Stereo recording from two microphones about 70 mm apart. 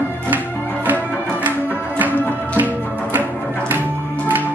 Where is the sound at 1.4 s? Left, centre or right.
Right.